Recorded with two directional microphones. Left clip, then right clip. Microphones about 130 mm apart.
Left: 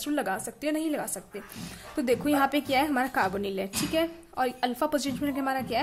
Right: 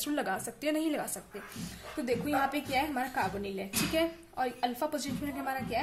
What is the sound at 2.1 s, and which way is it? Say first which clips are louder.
A woman's voice: left 6 dB; 35° left (ahead or behind).